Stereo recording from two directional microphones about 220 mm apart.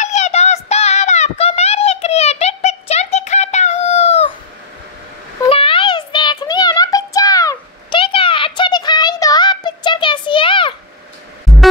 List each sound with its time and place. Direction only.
0.0 s child singing: 30° left (ahead or behind)
5.5 s child singing: 25° left (ahead or behind)